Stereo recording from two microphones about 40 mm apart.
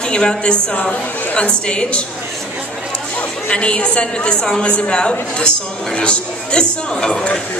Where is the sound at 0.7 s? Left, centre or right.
Left.